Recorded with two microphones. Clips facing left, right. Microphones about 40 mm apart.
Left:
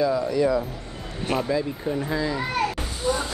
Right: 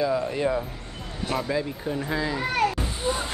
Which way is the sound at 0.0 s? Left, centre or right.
Centre.